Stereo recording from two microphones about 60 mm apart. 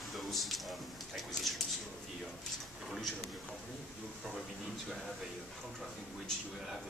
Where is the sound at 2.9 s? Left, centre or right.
Centre.